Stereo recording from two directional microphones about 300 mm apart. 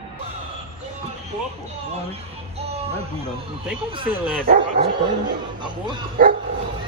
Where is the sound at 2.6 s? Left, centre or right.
Right.